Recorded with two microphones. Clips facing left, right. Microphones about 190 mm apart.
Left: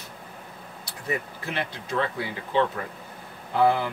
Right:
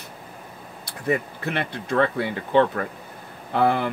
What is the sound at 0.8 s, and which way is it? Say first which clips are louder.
Speech: right 6 dB; 60° right (ahead or behind).